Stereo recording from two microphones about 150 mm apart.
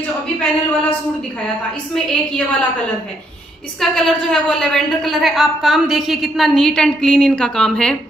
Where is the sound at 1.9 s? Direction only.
5° left (ahead or behind).